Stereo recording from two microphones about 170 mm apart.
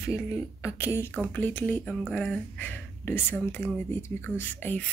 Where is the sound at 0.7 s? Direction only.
15° left (ahead or behind).